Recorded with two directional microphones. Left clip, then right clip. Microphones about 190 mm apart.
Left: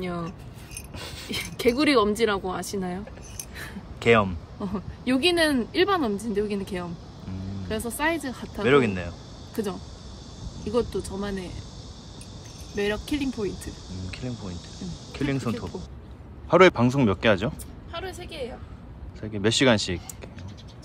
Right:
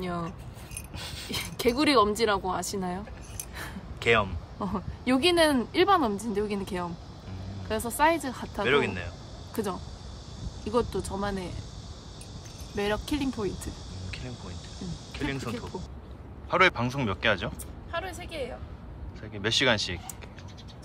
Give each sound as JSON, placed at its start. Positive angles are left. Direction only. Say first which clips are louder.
{"t": 0.0, "sound": "speech", "louder": "left 1 dB", "side_deg": -20}
{"t": 4.0, "sound": "speech", "louder": "left 4 dB", "side_deg": -10}
{"t": 4.7, "sound": "speech", "louder": "left 1 dB", "side_deg": -20}
{"t": 10.7, "sound": "speech", "louder": "left 2 dB", "side_deg": -15}
{"t": 12.7, "sound": "speech", "louder": "left 2 dB", "side_deg": -15}
{"t": 15.1, "sound": "speech", "louder": "left 5 dB", "side_deg": -5}
{"t": 19.2, "sound": "speech", "louder": "left 4 dB", "side_deg": -5}